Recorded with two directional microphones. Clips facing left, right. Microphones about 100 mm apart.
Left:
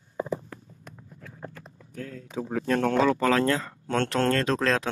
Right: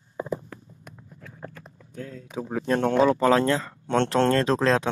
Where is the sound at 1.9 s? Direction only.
20° right (ahead or behind).